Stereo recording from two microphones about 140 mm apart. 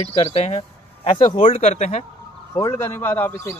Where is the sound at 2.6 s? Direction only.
20° left (ahead or behind).